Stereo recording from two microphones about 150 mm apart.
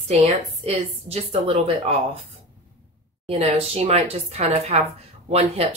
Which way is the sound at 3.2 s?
40° right (ahead or behind).